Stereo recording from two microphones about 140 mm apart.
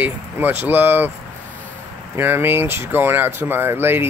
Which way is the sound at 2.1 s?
15° right (ahead or behind).